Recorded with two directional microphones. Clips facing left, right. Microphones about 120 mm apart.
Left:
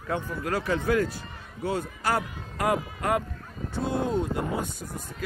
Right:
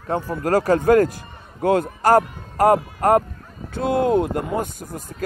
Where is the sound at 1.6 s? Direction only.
55° right (ahead or behind).